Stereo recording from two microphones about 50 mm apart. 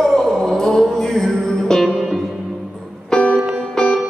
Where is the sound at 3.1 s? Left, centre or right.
Centre.